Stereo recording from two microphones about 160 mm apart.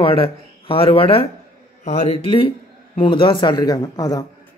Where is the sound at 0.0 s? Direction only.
35° left (ahead or behind).